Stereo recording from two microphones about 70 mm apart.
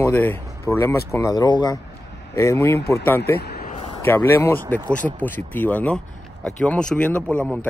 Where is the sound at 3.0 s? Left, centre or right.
Left.